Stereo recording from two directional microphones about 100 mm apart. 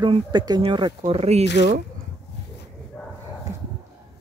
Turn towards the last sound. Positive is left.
turn(degrees=5)  # may be behind; listen again after turning